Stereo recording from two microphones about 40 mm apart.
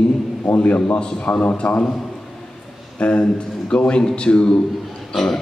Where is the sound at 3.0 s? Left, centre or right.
Left.